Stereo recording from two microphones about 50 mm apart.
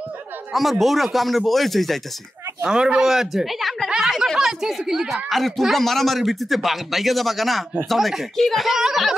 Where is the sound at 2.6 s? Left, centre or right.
Centre.